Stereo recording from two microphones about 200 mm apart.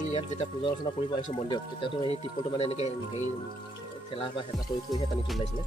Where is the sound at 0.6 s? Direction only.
25° left (ahead or behind).